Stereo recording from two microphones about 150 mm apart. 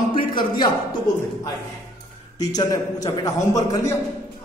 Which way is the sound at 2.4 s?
25° left (ahead or behind).